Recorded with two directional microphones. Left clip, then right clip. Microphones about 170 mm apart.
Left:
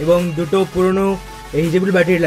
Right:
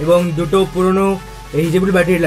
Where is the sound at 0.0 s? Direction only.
25° left (ahead or behind).